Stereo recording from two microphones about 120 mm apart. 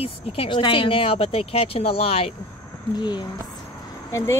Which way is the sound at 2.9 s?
40° left (ahead or behind).